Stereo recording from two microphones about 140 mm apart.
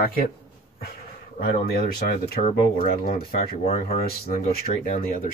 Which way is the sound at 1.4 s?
90° left.